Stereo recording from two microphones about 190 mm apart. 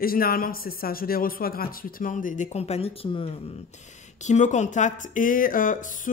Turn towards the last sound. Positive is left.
turn(degrees=45)  # may be behind; listen again after turning